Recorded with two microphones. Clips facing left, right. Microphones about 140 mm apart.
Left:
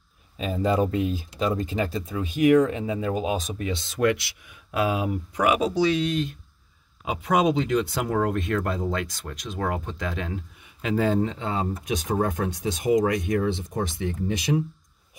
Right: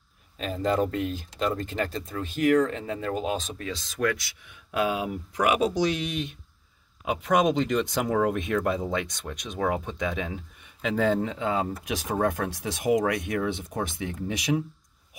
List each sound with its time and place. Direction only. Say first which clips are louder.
0.4 s speech: left 2 dB; 5° left (ahead or behind)
3.7 s speech: left 4 dB; 25° left (ahead or behind)
4.6 s speech: left 2 dB; 5° left (ahead or behind)